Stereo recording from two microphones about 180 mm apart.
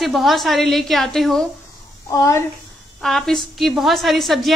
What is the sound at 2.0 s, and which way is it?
Speech, 20° left (ahead or behind).